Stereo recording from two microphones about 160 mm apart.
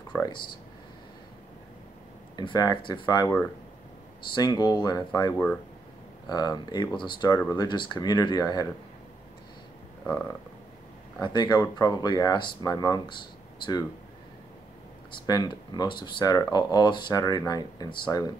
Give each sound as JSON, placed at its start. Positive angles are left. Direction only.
{"t": 0.1, "sound": "speech", "side_deg": 15}
{"t": 2.3, "sound": "speech", "side_deg": 25}
{"t": 4.4, "sound": "speech", "side_deg": 25}
{"t": 11.1, "sound": "speech", "side_deg": 25}
{"t": 15.2, "sound": "speech", "side_deg": 25}